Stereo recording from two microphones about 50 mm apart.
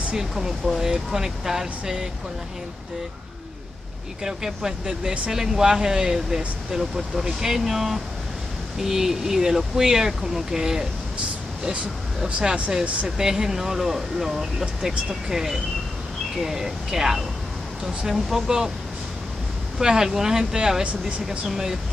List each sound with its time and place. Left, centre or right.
0.1 s speech: centre
4.2 s speech: centre
11.6 s speech: right
13.2 s speech: centre
19.8 s speech: centre